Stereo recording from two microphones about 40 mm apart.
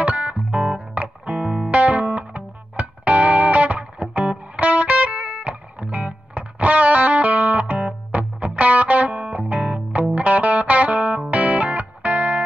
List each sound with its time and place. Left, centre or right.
0.0 s music: right